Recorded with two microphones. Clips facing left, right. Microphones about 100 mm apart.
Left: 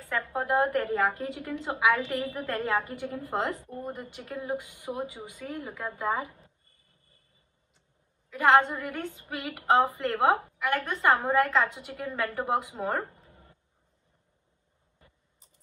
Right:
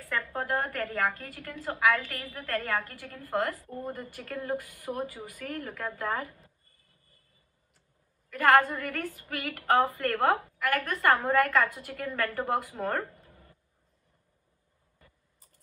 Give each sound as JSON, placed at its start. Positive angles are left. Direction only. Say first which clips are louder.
{"t": 0.0, "sound": "a woman's voice", "louder": "left 2 dB", "side_deg": 20}
{"t": 8.3, "sound": "a woman's voice", "louder": "left 1 dB", "side_deg": 20}
{"t": 13.3, "sound": "a sound", "louder": "even", "side_deg": 25}
{"t": 15.0, "sound": "biting", "louder": "even", "side_deg": 20}